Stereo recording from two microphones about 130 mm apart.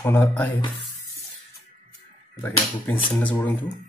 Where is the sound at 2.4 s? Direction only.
15° left (ahead or behind).